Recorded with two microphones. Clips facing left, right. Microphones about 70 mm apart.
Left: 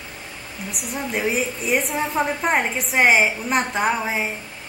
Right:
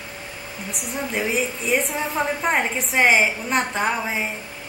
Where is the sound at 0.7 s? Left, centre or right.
Centre.